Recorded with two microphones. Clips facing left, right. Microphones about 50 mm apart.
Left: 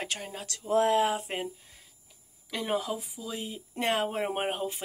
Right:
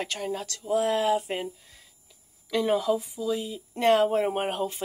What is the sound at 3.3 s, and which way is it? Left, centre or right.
Speech, left.